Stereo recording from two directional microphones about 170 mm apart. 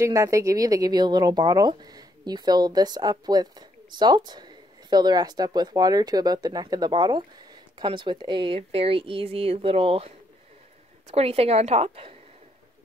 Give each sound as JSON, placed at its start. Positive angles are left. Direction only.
{"t": 0.0, "sound": "a woman's voice", "side_deg": -20}